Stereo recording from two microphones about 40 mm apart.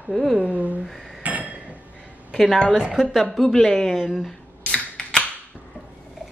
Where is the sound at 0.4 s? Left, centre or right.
Right.